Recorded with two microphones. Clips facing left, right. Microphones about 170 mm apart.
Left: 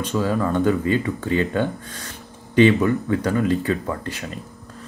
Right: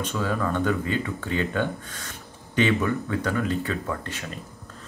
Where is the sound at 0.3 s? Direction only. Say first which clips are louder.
Left 5 dB; 15° left (ahead or behind).